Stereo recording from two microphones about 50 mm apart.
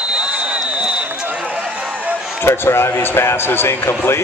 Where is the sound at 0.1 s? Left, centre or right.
Centre.